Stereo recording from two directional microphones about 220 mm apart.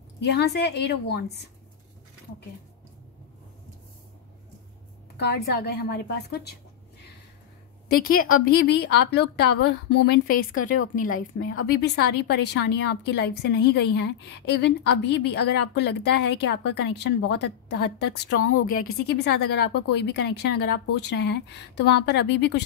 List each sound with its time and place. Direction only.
0.2 s a woman's voice: 50° left (ahead or behind)
5.1 s a woman's voice: 45° left (ahead or behind)
7.9 s a woman's voice: 40° left (ahead or behind)